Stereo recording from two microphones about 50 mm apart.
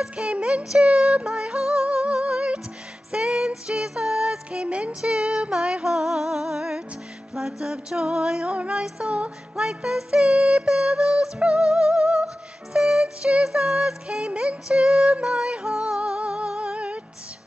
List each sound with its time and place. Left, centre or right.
0.1 s music: right
3.1 s a sound: centre
4.5 s music: right
8.5 s music: right
8.8 s music: centre